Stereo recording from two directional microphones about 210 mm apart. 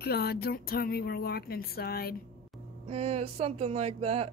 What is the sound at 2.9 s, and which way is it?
Speech, 30° right (ahead or behind).